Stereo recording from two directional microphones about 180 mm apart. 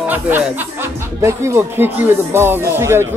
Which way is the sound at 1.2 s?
15° right (ahead or behind).